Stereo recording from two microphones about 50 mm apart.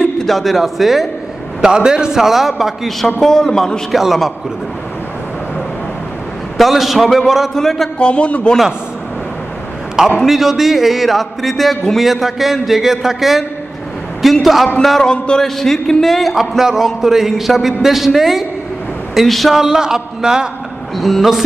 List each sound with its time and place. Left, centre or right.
0.3 s a man's voice: centre
1.6 s a man's voice: centre
3.2 s a man's voice: centre
6.6 s a man's voice: centre
7.5 s a man's voice: centre
8.0 s a man's voice: left
10.2 s a man's voice: centre
15.1 s a man's voice: centre
15.4 s a man's voice: centre
19.6 s a man's voice: centre